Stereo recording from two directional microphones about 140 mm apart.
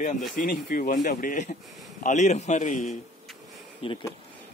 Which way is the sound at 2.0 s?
60° left (ahead or behind).